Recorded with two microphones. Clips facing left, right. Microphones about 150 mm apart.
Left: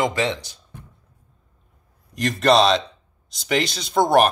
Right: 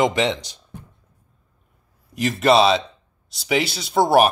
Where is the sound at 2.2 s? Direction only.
5° right (ahead or behind).